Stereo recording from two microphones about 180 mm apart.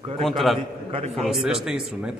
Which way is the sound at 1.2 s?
Centre (ahead or behind).